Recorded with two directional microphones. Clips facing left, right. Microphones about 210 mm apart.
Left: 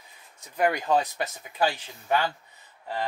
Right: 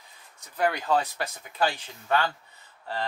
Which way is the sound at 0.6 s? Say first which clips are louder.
Left 2 dB; 15° left (ahead or behind).